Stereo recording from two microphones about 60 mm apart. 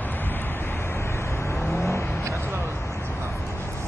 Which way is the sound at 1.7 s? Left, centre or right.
Left.